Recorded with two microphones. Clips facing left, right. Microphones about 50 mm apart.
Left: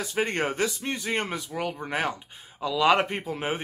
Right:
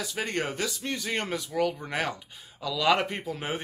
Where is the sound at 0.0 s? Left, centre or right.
Left.